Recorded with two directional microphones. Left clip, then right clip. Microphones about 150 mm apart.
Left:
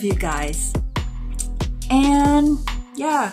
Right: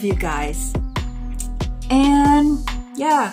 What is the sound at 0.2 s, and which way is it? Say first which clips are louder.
Speech: right 1 dB; 20° left (ahead or behind).